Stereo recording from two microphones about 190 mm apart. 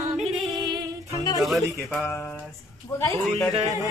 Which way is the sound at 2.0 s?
10° left (ahead or behind).